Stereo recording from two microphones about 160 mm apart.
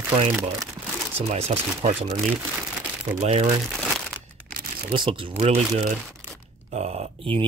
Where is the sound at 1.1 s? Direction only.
40° right (ahead or behind).